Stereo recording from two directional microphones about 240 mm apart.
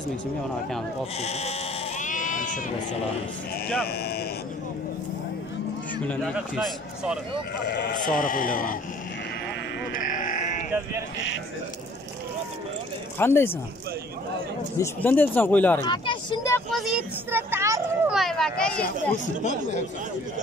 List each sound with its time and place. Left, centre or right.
1.2 s sheep: left
3.8 s speech: left
6.0 s speech: centre
7.6 s speech: left
10.0 s sheep: left
13.2 s speech: centre
14.8 s speech: centre
15.9 s speech: centre
16.7 s a child's voice: centre
18.1 s speech: centre
19.2 s speech: left